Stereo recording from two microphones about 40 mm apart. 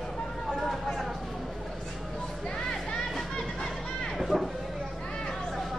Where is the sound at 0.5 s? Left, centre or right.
Centre.